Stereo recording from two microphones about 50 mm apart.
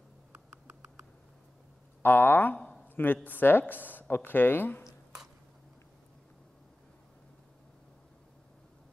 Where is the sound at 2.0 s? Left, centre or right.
Left.